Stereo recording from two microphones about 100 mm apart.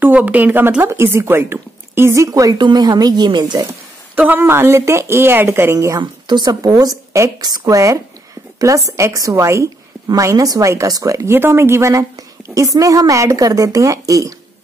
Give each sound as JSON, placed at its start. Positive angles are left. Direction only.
{"t": 0.0, "sound": "speech", "side_deg": -15}
{"t": 4.1, "sound": "speech", "side_deg": -20}
{"t": 5.9, "sound": "a woman's voice", "side_deg": -45}